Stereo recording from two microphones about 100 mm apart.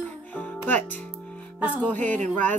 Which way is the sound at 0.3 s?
15° left (ahead or behind).